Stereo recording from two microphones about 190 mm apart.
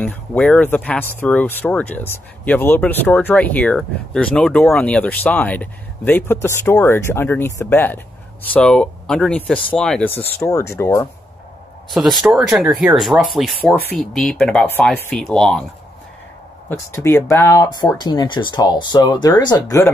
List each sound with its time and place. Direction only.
0.0 s speech: 10° left (ahead or behind)
11.9 s speech: centre (ahead or behind)
16.6 s speech: 15° left (ahead or behind)